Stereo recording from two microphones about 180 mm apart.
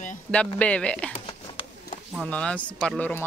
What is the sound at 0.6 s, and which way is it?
Speech, 5° left (ahead or behind).